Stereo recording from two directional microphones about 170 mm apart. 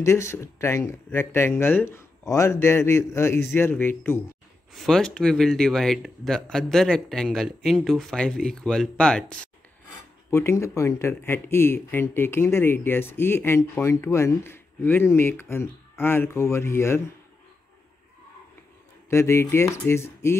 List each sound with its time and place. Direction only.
0.0 s speech: 15° left (ahead or behind)
10.3 s speech: 15° left (ahead or behind)
19.0 s speech: 15° left (ahead or behind)